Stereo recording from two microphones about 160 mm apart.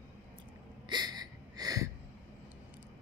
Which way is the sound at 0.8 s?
25° right (ahead or behind).